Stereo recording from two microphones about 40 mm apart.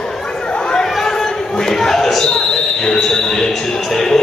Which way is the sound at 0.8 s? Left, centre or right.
Centre.